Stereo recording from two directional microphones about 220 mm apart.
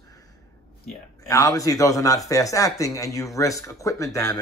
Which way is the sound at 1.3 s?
15° left (ahead or behind).